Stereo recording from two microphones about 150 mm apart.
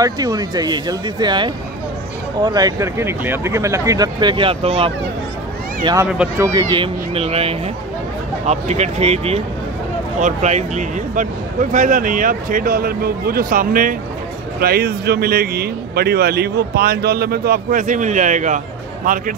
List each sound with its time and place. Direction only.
0.0 s speech: 25° right (ahead or behind)
7.2 s speech: 40° right (ahead or behind); by 13.9 s 65° right (ahead or behind)
14.6 s a man's voice: 90° right; by 18.6 s 55° right (ahead or behind)